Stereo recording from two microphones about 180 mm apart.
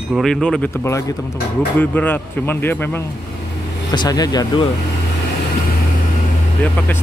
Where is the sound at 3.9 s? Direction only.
25° left (ahead or behind).